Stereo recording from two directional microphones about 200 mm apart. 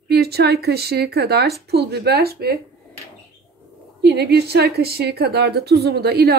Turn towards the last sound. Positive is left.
turn(degrees=-50)  # may be behind; listen again after turning